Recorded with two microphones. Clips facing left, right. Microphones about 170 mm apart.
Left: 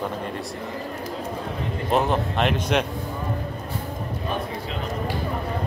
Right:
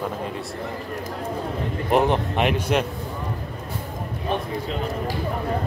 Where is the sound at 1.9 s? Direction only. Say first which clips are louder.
Right 2 dB; 15° right (ahead or behind).